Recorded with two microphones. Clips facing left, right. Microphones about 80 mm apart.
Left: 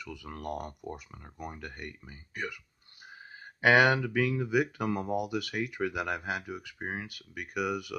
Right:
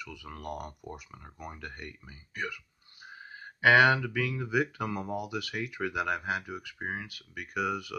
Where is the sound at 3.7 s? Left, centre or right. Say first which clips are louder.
Right 1 dB; left.